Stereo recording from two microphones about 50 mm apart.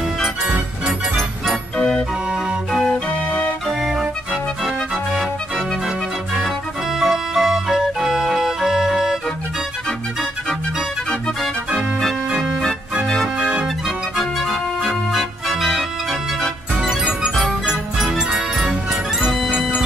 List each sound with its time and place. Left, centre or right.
0.2 s music: centre
1.8 s organ: centre
2.9 s music: left
3.9 s music: centre
7.0 s music: centre
12.3 s organ: centre
13.8 s organ: centre
17.6 s music: centre